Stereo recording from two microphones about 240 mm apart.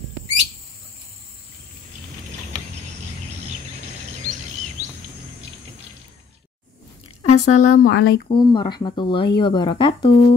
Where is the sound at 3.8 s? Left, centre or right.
Right.